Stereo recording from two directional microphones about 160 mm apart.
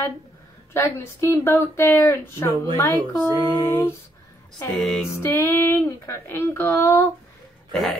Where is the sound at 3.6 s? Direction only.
20° left (ahead or behind).